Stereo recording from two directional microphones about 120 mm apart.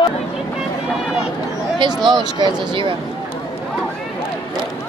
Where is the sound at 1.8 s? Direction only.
40° right (ahead or behind).